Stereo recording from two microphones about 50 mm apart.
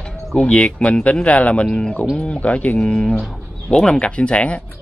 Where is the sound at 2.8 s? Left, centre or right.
Centre.